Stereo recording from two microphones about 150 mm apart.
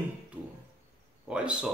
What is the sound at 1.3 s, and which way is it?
Speech, 5° right (ahead or behind).